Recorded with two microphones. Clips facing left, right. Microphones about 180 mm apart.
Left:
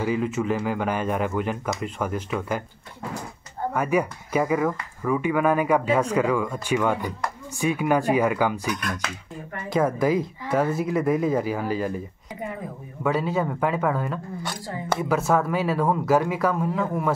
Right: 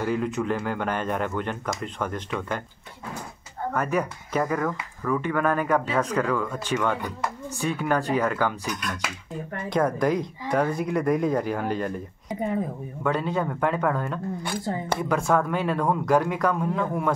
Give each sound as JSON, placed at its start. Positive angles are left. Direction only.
{"t": 0.0, "sound": "speech", "side_deg": 5}
{"t": 3.7, "sound": "speech", "side_deg": 10}
{"t": 9.7, "sound": "speech", "side_deg": 5}
{"t": 13.0, "sound": "speech", "side_deg": 5}